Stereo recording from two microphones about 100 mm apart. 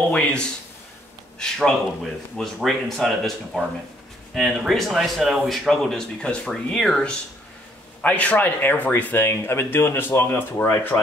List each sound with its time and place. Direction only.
0.1 s a man's voice: 10° left (ahead or behind)